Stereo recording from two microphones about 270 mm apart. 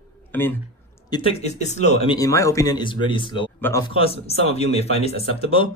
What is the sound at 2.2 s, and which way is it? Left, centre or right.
Speech, centre.